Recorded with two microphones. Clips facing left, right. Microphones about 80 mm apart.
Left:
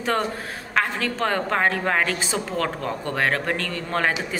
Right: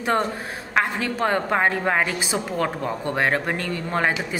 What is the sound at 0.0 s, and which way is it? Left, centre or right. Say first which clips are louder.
A woman's voice: right 2 dB; right.